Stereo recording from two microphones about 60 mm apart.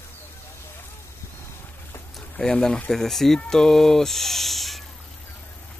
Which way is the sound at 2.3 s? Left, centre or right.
Centre.